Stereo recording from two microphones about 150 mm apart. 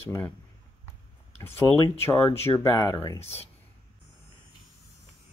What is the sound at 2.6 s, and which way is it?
Speech, 20° left (ahead or behind).